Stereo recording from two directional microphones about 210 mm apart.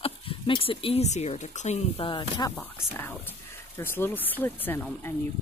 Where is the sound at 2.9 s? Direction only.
10° left (ahead or behind).